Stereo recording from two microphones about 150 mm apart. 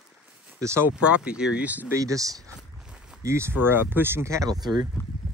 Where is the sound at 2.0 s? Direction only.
20° right (ahead or behind).